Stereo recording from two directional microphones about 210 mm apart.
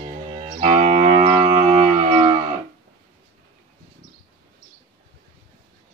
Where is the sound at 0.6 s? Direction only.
35° right (ahead or behind).